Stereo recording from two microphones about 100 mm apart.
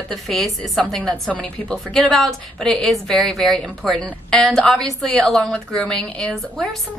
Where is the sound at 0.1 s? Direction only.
5° left (ahead or behind).